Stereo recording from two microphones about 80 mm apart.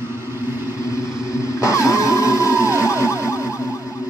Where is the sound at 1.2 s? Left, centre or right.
Left.